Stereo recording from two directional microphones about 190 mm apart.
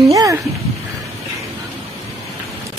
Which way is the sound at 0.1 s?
15° right (ahead or behind).